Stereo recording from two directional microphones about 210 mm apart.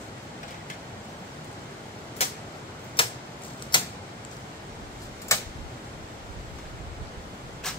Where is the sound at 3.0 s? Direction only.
25° left (ahead or behind).